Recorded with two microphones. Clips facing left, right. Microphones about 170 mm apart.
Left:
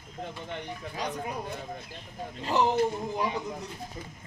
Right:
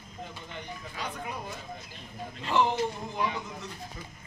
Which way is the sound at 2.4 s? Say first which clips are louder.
Even; 40° left (ahead or behind).